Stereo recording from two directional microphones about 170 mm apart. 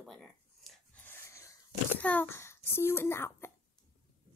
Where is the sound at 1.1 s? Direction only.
15° left (ahead or behind).